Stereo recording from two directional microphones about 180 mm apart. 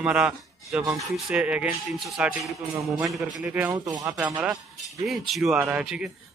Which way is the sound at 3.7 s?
20° right (ahead or behind).